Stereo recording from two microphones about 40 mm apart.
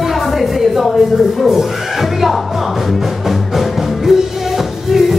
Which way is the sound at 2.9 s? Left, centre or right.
Centre.